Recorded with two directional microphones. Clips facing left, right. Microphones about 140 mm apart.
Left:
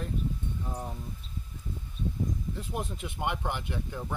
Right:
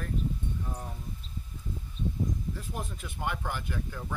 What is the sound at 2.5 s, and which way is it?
Speech, 20° left (ahead or behind).